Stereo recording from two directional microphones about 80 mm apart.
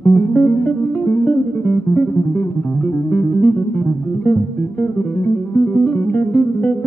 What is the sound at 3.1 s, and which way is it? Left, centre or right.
Music, left.